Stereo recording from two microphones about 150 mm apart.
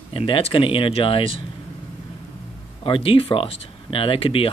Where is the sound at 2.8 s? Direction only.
35° left (ahead or behind).